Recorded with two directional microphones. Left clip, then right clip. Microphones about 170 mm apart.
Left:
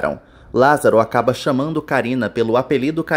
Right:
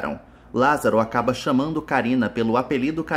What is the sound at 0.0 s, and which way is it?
Speech, 25° left (ahead or behind).